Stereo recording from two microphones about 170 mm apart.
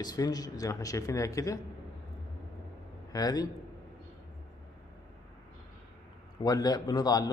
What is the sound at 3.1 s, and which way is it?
Speech, 20° left (ahead or behind).